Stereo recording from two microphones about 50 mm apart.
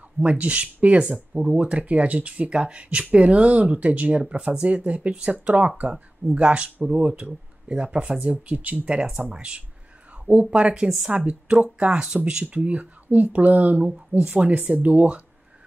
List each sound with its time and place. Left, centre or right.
0.2 s speech: right
12.5 s speech: right
13.8 s speech: centre
14.4 s speech: right